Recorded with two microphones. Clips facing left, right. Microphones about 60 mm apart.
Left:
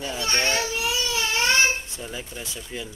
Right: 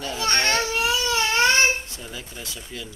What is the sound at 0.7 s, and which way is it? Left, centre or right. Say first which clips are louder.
Baby cry: right 4 dB; right.